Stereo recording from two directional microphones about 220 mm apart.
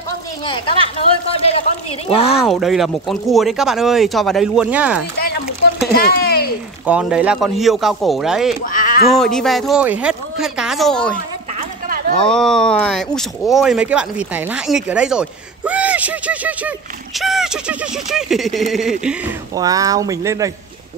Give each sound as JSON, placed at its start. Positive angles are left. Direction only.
{"t": 0.5, "sound": "speech", "side_deg": 25}
{"t": 2.3, "sound": "speech", "side_deg": 0}
{"t": 5.9, "sound": "a sound", "side_deg": 45}
{"t": 6.9, "sound": "speech", "side_deg": -5}
{"t": 8.6, "sound": "cat", "side_deg": 40}
{"t": 9.1, "sound": "speech", "side_deg": 0}
{"t": 12.2, "sound": "speech", "side_deg": 5}
{"t": 19.5, "sound": "speech", "side_deg": -15}